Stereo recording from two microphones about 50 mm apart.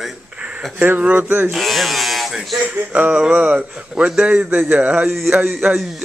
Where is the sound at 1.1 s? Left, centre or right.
Right.